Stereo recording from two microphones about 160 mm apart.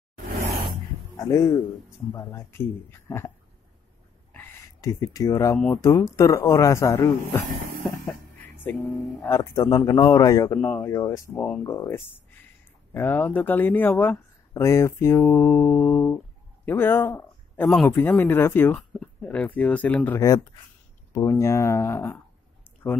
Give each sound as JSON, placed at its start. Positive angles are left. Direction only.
{"t": 1.1, "sound": "speech", "side_deg": 20}
{"t": 4.3, "sound": "a sound", "side_deg": 15}
{"t": 5.7, "sound": "a man's voice", "side_deg": 20}
{"t": 8.1, "sound": "music", "side_deg": 15}
{"t": 9.2, "sound": "a man's voice", "side_deg": 20}
{"t": 21.1, "sound": "speech", "side_deg": 20}